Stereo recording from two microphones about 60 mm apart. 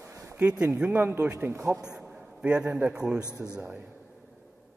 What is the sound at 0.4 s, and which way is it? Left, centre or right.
Speech, centre.